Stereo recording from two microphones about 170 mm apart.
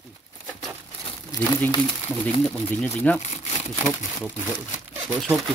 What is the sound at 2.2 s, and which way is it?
Speech, 10° left (ahead or behind).